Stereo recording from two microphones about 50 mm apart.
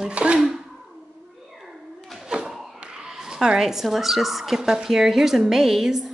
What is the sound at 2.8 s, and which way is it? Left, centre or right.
A woman's voice, centre.